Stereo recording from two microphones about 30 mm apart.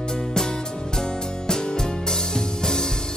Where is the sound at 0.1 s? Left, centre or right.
Left.